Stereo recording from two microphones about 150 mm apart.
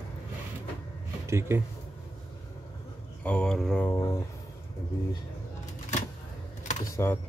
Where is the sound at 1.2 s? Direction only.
20° right (ahead or behind).